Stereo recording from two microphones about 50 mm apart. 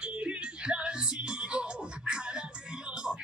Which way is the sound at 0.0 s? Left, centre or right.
Right.